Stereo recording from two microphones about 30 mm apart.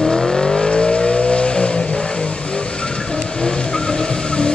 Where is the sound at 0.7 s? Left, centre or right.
Left.